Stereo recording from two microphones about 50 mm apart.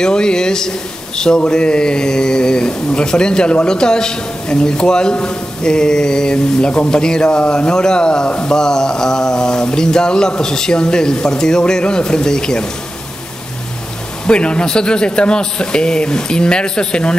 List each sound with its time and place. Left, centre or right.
0.0 s a man's voice: centre
14.2 s a man's voice: centre